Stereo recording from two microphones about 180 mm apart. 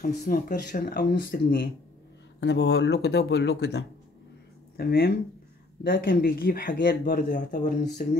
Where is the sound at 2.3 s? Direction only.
70° left (ahead or behind).